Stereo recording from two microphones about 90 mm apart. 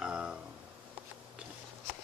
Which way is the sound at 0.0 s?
10° right (ahead or behind).